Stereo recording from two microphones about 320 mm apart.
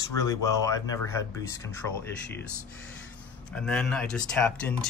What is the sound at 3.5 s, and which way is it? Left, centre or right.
Speech, centre.